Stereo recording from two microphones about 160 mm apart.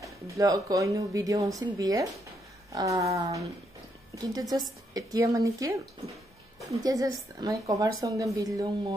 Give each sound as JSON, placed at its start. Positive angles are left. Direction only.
{"t": 0.0, "sound": "a woman's voice", "side_deg": -20}